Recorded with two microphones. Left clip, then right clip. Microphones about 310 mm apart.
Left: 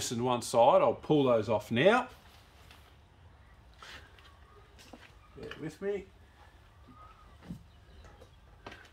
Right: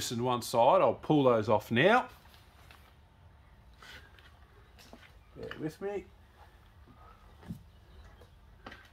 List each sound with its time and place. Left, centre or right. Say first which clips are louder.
0.0 s speech: left 1 dB; centre
5.8 s speech: left 4 dB; right